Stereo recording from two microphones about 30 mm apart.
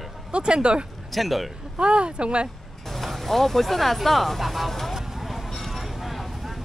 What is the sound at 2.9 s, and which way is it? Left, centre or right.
Speech, centre.